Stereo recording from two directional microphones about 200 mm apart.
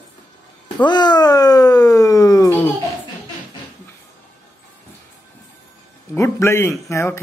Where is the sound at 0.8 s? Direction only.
20° left (ahead or behind).